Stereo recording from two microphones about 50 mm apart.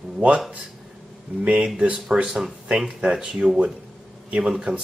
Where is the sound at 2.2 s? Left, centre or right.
Centre.